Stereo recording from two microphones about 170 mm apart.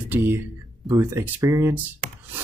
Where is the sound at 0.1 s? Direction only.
15° right (ahead or behind).